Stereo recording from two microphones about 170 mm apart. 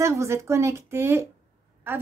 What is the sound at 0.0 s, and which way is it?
A woman's voice, 15° right (ahead or behind).